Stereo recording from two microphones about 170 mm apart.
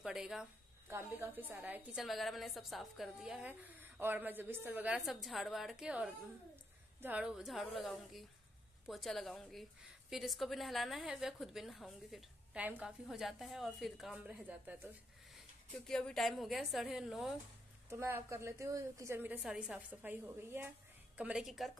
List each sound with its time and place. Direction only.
0.0 s speech: 5° right (ahead or behind)
15.9 s speech: 5° left (ahead or behind)
17.8 s a woman's voice: 15° right (ahead or behind)